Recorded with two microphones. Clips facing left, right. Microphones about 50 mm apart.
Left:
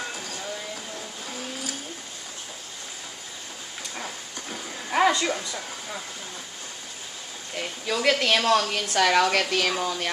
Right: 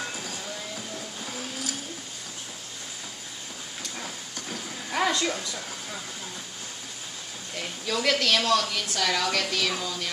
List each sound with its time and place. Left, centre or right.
0.0 s train: centre
0.9 s vehicle: centre
3.9 s a sound: centre
7.5 s speech: centre
8.6 s a woman's voice: left